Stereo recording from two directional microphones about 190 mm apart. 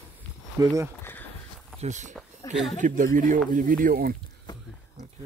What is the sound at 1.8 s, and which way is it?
Speech, 40° right (ahead or behind).